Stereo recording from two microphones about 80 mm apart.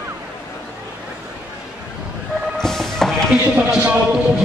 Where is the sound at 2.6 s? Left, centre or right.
Centre.